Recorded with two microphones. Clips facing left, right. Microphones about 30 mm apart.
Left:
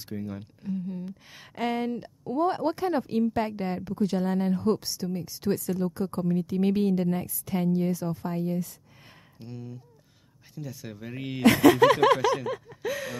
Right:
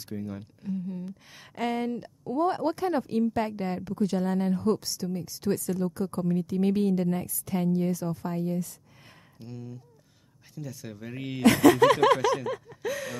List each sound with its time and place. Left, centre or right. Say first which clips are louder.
0.0 s speech: left 1 dB; centre
6.2 s speech: left 1 dB; centre